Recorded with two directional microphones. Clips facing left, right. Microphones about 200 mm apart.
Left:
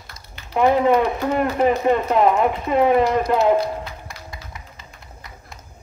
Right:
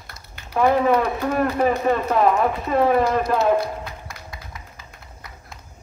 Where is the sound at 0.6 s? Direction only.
20° left (ahead or behind).